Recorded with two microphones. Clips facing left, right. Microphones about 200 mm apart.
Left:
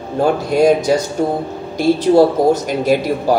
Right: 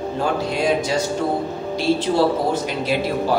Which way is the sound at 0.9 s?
45° left (ahead or behind).